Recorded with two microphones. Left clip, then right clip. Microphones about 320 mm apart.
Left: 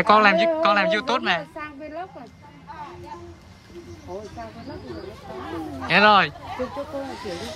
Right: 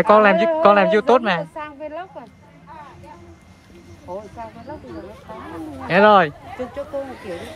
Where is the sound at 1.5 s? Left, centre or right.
Right.